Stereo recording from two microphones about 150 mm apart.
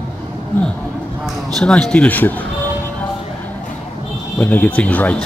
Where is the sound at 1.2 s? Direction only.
5° left (ahead or behind).